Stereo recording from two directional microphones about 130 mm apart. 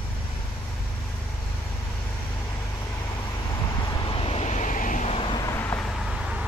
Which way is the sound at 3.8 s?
30° left (ahead or behind).